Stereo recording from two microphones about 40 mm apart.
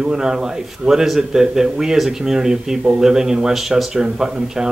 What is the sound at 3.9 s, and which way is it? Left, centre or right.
Speech, centre.